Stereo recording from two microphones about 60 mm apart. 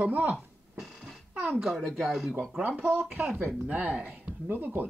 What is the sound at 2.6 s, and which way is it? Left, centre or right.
Speech, right.